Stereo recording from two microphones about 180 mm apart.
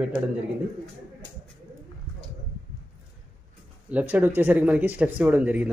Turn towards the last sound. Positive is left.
turn(degrees=-10)  # may be behind; listen again after turning